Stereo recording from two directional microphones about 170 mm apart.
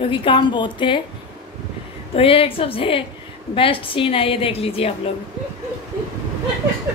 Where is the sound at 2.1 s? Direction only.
35° left (ahead or behind).